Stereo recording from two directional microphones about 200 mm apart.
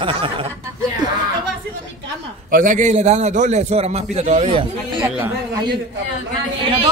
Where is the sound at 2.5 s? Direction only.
40° right (ahead or behind).